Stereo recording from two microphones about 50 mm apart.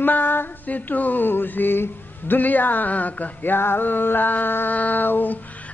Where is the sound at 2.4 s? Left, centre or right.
Left.